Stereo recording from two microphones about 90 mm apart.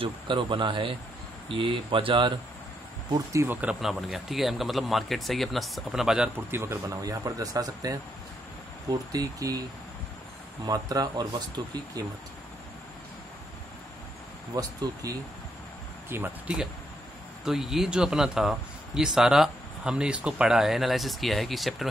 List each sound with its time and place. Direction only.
0.0 s speech: 65° right (ahead or behind)
3.4 s speech: 25° right (ahead or behind)
3.8 s speech: centre (ahead or behind)
6.5 s speech: 30° right (ahead or behind)
7.0 s speech: 40° right (ahead or behind)
10.6 s speech: 45° right (ahead or behind)
14.5 s speech: 45° right (ahead or behind)
16.1 s speech: 25° right (ahead or behind)
17.5 s speech: 5° right (ahead or behind)